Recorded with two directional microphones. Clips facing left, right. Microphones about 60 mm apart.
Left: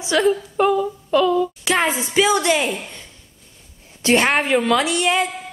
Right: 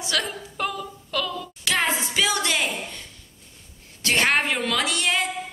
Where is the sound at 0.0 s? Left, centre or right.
Left.